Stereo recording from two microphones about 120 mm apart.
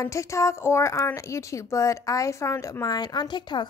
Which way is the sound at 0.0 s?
25° left (ahead or behind).